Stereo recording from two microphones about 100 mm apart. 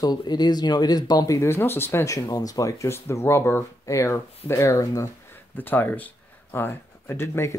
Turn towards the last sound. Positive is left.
turn(degrees=25)  # may be behind; listen again after turning